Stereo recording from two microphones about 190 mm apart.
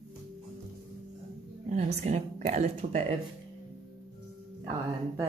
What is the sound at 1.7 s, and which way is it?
A woman's voice, 35° right (ahead or behind).